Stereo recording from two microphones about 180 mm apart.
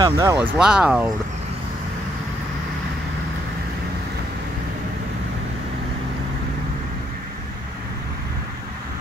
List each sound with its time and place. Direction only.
0.0 s speech: 20° right (ahead or behind)
0.6 s speech: 5° right (ahead or behind)